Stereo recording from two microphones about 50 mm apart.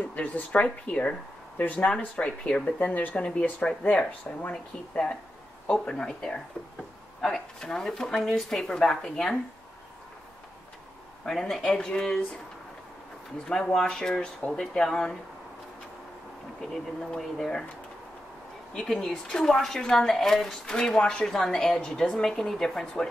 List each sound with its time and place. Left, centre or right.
0.1 s speech: left
2.8 s speech: left
5.7 s a woman's voice: centre
11.2 s a woman's voice: centre
13.5 s a woman's voice: centre
16.7 s a woman's voice: centre
18.7 s a woman's voice: centre
20.4 s a woman's voice: centre